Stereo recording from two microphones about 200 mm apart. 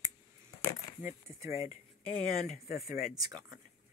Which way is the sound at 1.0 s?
15° right (ahead or behind).